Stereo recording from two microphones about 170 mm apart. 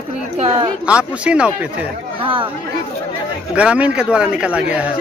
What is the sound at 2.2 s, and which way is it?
Speech, 30° right (ahead or behind).